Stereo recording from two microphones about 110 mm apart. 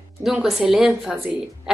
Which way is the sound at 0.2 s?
5° right (ahead or behind).